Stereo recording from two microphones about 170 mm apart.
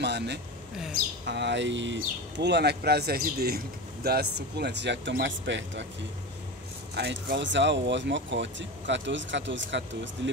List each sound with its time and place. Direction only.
0.0 s a sound: 85° right
1.2 s speech: 85° right
7.0 s speech: 80° right